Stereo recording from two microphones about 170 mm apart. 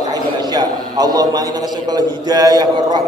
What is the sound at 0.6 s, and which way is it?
A man's voice, 25° right (ahead or behind).